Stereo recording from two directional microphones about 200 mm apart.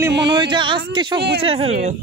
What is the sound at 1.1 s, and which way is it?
Speech, 55° right (ahead or behind).